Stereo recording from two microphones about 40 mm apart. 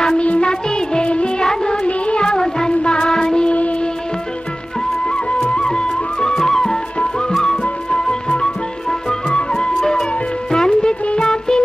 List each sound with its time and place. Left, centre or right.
0.2 s music: left
0.5 s music: left
5.0 s music: left